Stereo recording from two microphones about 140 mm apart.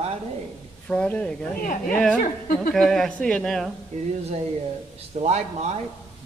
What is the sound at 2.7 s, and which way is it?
Speech, 5° left (ahead or behind).